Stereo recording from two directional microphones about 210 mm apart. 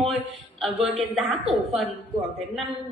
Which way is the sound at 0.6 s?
Centre (ahead or behind).